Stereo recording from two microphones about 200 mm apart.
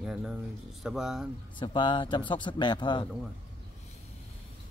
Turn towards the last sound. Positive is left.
turn(degrees=25)  # may be behind; listen again after turning